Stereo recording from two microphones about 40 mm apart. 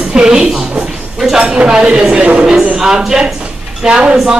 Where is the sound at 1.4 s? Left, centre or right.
Right.